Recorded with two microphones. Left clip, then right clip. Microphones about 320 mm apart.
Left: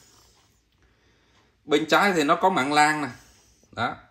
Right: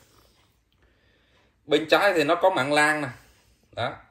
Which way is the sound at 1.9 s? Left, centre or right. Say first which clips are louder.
Right 1 dB; left.